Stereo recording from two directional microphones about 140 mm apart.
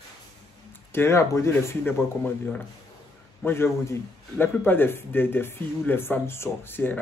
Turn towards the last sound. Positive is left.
turn(degrees=15)  # may be behind; listen again after turning